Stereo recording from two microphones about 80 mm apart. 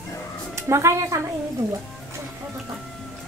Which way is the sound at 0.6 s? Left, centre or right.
Right.